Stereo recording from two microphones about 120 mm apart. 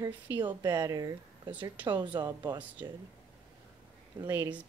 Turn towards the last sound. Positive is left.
turn(degrees=-15)  # may be behind; listen again after turning